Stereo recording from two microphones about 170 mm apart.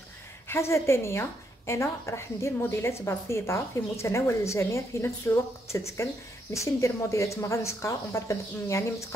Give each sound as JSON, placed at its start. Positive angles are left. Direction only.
{"t": 0.5, "sound": "a woman's voice", "side_deg": 15}